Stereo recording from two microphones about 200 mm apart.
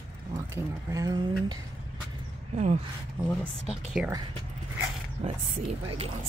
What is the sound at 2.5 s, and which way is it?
Speech, 35° right (ahead or behind).